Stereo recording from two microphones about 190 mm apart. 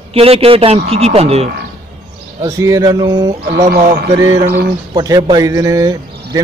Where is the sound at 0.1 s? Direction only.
30° right (ahead or behind).